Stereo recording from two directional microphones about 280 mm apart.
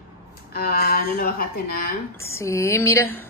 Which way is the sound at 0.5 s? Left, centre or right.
Left.